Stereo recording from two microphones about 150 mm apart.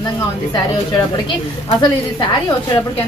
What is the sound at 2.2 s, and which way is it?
Speech, 30° left (ahead or behind).